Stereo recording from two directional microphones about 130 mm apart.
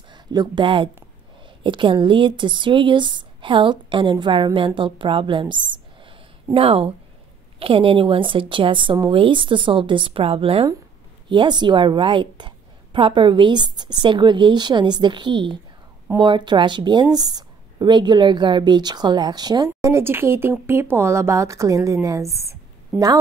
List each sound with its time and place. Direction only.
0.1 s speech: 35° right (ahead or behind)
11.2 s a woman's voice: 35° right (ahead or behind)